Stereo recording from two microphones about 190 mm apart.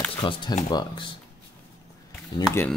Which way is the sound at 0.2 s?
25° left (ahead or behind).